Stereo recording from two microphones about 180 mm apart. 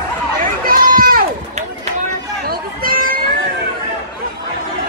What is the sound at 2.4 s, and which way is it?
Hubbub, 50° right (ahead or behind).